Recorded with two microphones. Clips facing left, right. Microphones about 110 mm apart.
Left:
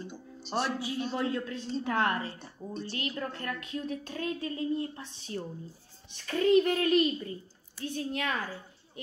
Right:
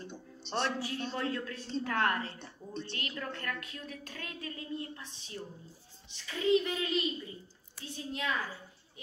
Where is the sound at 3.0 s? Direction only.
30° left (ahead or behind).